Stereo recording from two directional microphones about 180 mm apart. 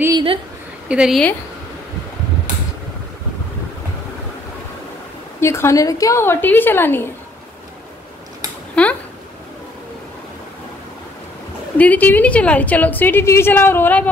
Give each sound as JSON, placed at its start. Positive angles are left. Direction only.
{"t": 0.0, "sound": "a woman's voice", "side_deg": -25}
{"t": 0.8, "sound": "a woman's voice", "side_deg": -5}
{"t": 5.4, "sound": "a woman's voice", "side_deg": 15}
{"t": 8.8, "sound": "a sound", "side_deg": 5}
{"t": 11.8, "sound": "a woman's voice", "side_deg": 10}